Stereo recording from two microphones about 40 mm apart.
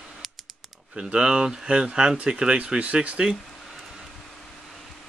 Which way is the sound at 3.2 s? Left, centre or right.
Centre.